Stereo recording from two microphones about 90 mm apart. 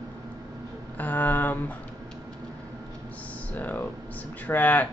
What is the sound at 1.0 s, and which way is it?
Speech, 20° left (ahead or behind).